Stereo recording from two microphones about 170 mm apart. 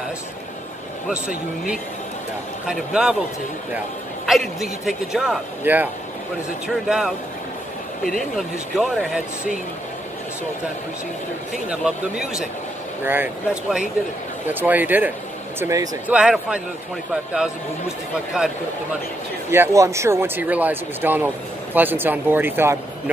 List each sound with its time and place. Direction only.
2.6 s speech: 5° right (ahead or behind)
4.3 s speech: centre (ahead or behind)
8.2 s speech: centre (ahead or behind)
11.5 s speech: 5° right (ahead or behind); by 15.9 s 20° right (ahead or behind)
16.1 s speech: 5° right (ahead or behind)
19.5 s speech: 15° right (ahead or behind)